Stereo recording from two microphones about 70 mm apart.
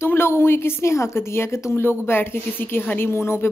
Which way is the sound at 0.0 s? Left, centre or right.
Left.